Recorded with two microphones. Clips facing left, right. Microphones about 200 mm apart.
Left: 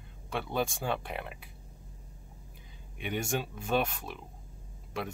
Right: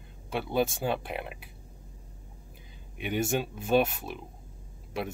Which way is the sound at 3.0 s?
10° right (ahead or behind).